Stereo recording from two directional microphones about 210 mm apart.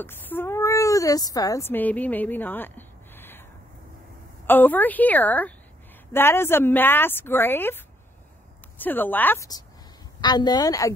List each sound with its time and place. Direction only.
0.0 s speech: 10° left (ahead or behind)
4.5 s a woman's voice: 10° left (ahead or behind)